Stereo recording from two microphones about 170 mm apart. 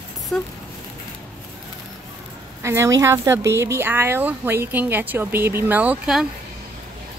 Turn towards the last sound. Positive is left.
turn(degrees=-5)  # may be behind; listen again after turning